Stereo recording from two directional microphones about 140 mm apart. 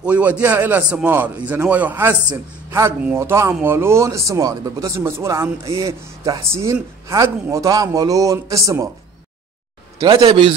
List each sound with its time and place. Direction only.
0.0 s a man's voice: 10° right (ahead or behind)
3.2 s speech: 20° right (ahead or behind)
10.0 s speech: 40° right (ahead or behind)